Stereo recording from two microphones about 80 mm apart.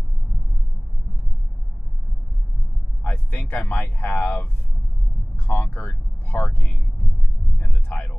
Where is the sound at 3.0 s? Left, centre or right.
Left.